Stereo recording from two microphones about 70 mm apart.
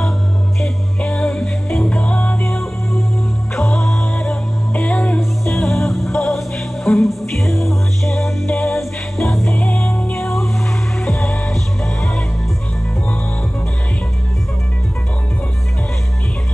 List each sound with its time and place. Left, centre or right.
0.6 s music: centre
3.6 s music: centre
9.6 s music: centre
10.2 s music: centre
11.1 s music: centre